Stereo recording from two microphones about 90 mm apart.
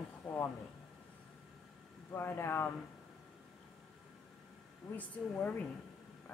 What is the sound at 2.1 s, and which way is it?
Speech, 25° left (ahead or behind).